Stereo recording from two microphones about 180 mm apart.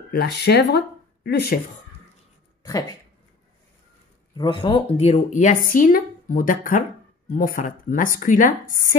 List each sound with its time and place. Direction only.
0.1 s speech: 60° left (ahead or behind)
2.6 s speech: 20° left (ahead or behind)
4.4 s speech: 25° left (ahead or behind); by 8.7 s 45° left (ahead or behind)